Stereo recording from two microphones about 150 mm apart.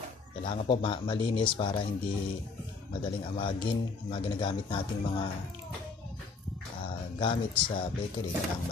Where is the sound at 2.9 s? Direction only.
35° left (ahead or behind).